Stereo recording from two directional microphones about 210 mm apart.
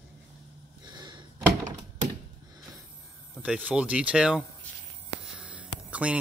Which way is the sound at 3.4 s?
5° right (ahead or behind).